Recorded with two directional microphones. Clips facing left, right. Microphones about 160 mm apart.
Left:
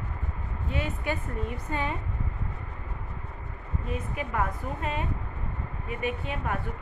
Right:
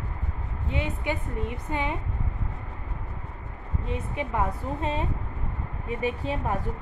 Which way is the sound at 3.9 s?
25° right (ahead or behind).